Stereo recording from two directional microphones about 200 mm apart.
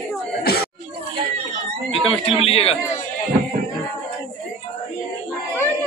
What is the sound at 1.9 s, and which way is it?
Speech, 30° left (ahead or behind).